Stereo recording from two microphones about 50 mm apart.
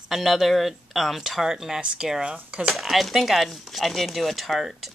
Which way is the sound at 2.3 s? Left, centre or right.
Right.